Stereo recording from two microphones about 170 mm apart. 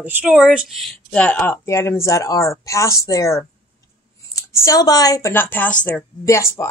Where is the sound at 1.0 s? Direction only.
10° left (ahead or behind).